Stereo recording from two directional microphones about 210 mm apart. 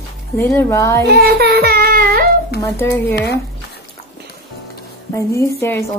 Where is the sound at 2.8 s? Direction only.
10° left (ahead or behind).